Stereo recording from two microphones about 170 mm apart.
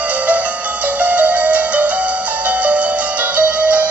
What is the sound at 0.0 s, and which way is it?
Music, 10° right (ahead or behind).